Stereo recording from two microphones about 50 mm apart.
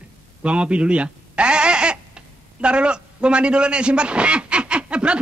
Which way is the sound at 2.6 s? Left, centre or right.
Right.